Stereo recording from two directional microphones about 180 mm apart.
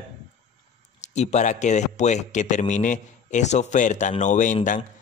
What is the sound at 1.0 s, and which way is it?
Speech, 40° left (ahead or behind).